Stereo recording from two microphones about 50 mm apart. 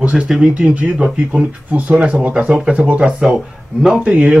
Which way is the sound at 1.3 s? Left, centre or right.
Right.